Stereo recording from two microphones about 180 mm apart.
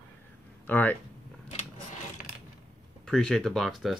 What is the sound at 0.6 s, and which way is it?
Speech, 10° left (ahead or behind).